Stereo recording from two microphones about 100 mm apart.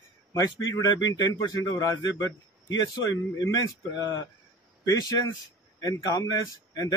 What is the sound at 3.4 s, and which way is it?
A man's voice, 35° left (ahead or behind).